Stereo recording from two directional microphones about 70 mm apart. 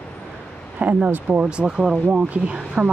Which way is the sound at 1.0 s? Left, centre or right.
Centre.